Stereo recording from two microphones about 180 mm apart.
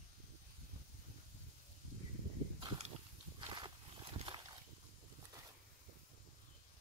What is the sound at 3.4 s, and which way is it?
Walk, 25° right (ahead or behind).